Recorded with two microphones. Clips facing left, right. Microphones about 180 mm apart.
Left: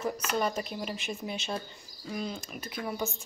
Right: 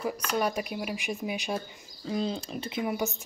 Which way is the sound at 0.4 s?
10° right (ahead or behind).